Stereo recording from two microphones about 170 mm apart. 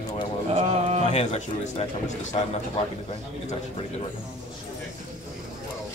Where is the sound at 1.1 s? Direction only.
40° left (ahead or behind).